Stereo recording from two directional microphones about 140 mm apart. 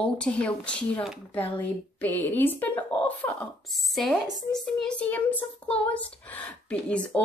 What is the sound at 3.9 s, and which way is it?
Speech, centre (ahead or behind).